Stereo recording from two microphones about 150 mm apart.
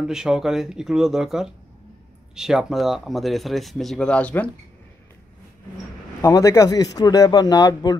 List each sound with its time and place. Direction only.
0.0 s speech: 5° right (ahead or behind)
6.2 s speech: 20° left (ahead or behind)